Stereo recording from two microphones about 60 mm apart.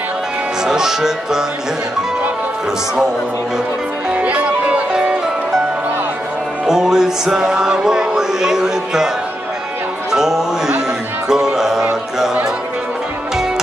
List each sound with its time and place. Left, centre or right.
0.7 s speech: centre
4.1 s music: right
6.6 s music: centre
10.1 s music: centre